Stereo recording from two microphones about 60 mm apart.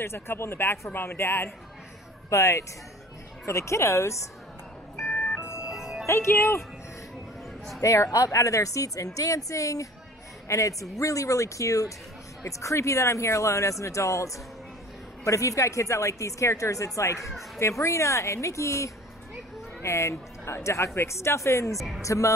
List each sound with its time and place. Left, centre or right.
0.0 s a woman's voice: left
2.2 s a woman's voice: left
5.1 s music: left
5.6 s music: centre
6.0 s a woman's voice: left
7.8 s a woman's voice: left
21.7 s speech: centre
22.0 s speech: left